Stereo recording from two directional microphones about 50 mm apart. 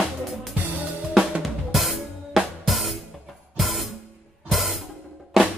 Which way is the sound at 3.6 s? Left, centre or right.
Centre.